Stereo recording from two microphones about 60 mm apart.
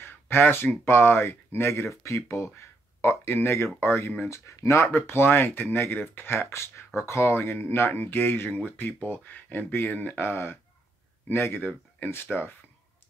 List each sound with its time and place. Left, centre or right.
0.0 s speech: left
2.0 s speech: left
4.2 s speech: left